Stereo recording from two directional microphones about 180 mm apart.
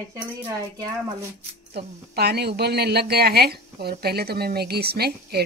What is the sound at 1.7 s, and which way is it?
A woman's voice, 65° right (ahead or behind).